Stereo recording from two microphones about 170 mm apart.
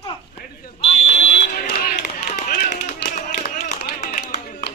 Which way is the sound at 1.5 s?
60° left (ahead or behind).